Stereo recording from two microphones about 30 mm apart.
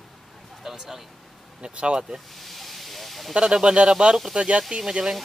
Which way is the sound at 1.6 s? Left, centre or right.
Right.